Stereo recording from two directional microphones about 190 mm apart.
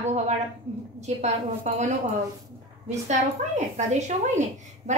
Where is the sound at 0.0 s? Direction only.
35° right (ahead or behind).